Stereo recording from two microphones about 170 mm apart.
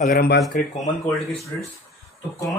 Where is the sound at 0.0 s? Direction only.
65° left (ahead or behind).